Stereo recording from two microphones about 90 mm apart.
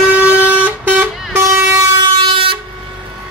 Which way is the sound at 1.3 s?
30° right (ahead or behind).